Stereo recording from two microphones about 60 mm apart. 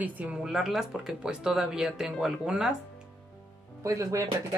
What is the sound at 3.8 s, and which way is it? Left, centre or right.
Speech, right.